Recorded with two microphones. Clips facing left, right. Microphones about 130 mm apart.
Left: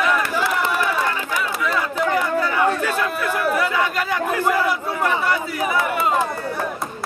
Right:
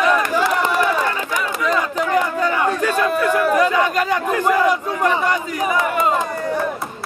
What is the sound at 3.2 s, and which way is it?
Battle cry, 15° right (ahead or behind).